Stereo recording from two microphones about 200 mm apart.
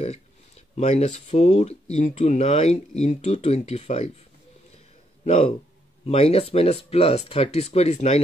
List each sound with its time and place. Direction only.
0.0 s speech: 35° left (ahead or behind)
5.2 s speech: 35° left (ahead or behind)